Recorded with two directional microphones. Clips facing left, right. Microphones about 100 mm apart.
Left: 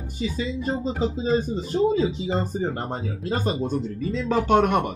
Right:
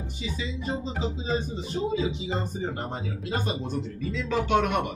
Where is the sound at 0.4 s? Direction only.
45° left (ahead or behind).